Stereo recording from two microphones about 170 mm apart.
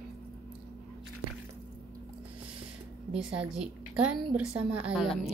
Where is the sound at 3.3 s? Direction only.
5° right (ahead or behind).